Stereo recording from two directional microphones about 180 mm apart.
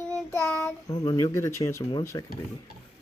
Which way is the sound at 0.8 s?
20° left (ahead or behind).